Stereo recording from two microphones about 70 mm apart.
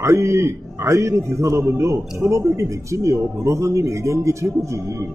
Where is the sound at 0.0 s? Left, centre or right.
Right.